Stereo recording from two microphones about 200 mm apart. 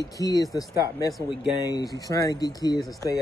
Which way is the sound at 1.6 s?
20° left (ahead or behind).